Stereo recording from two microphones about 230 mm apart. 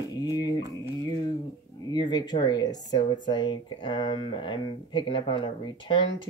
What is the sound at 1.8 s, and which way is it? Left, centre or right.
Speech, centre.